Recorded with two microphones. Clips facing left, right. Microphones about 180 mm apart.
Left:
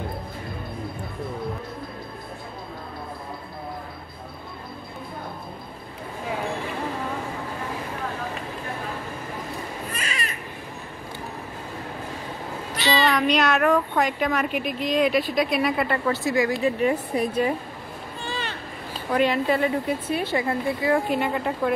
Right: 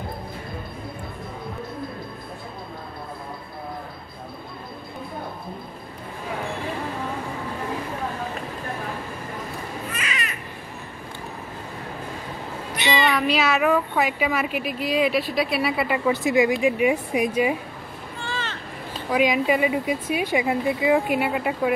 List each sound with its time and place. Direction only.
9.9 s babbling: 30° left (ahead or behind)
12.7 s a sound: 20° right (ahead or behind)
13.1 s speech: 5° right (ahead or behind)
16.1 s speech: 20° right (ahead or behind)
18.2 s a sound: 15° left (ahead or behind)
19.0 s speech: 10° right (ahead or behind)